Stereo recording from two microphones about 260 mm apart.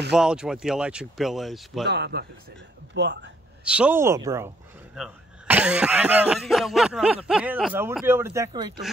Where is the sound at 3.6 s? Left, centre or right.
Centre.